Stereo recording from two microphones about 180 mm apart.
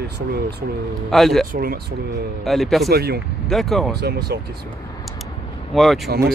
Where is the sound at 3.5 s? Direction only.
Centre (ahead or behind).